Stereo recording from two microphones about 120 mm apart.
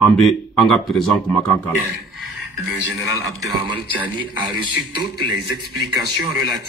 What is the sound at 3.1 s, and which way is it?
Speech, 30° right (ahead or behind).